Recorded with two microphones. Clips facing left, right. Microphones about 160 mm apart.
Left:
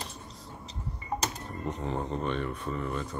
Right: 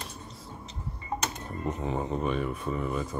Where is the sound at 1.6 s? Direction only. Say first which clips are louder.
Right 2 dB; 5° right (ahead or behind).